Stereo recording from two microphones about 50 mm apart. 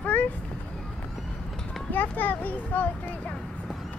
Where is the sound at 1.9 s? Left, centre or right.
Left.